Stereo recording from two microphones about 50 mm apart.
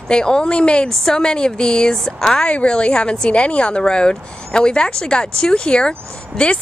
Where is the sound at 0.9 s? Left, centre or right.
Centre.